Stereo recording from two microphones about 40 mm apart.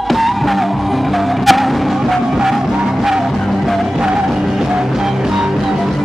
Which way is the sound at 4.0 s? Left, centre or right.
Right.